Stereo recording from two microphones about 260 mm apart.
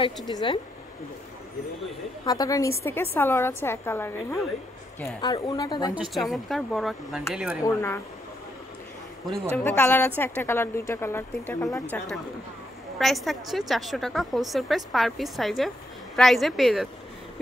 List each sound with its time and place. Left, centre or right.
0.3 s a woman's voice: centre
2.2 s a woman's voice: centre
5.9 s a woman's voice: centre
7.6 s a woman's voice: centre
9.6 s a woman's voice: centre
13.0 s a woman's voice: centre